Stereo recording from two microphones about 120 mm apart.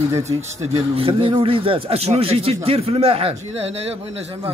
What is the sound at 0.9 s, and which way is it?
Speech, 50° right (ahead or behind).